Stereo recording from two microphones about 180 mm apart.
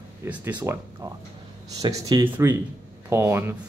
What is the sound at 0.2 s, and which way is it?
Speech, 10° right (ahead or behind).